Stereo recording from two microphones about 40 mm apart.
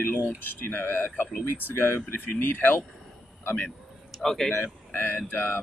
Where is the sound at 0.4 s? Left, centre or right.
Left.